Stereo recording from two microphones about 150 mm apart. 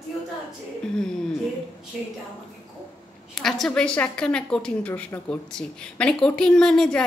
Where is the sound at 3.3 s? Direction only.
Centre (ahead or behind).